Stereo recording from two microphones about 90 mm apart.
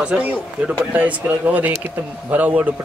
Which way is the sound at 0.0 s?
15° right (ahead or behind).